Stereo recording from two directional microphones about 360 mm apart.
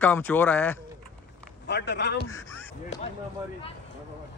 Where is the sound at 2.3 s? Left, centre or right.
Centre.